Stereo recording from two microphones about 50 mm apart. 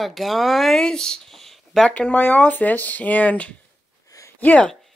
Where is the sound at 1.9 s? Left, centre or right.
Left.